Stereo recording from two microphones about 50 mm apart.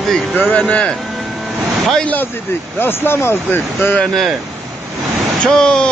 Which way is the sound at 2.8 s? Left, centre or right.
Left.